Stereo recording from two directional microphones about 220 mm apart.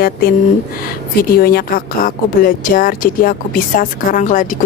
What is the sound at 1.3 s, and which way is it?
A woman's voice, 45° left (ahead or behind).